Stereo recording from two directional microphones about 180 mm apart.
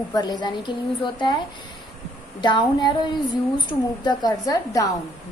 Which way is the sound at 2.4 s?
25° left (ahead or behind).